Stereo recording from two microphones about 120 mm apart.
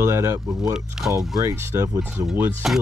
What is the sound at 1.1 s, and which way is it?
Speech, 20° right (ahead or behind).